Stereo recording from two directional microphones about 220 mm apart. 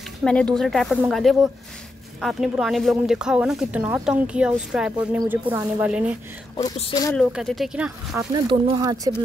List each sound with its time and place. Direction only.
0.2 s speech: 5° left (ahead or behind)
6.5 s speech: 20° left (ahead or behind)
7.2 s speech: centre (ahead or behind)
8.5 s speech: 20° right (ahead or behind)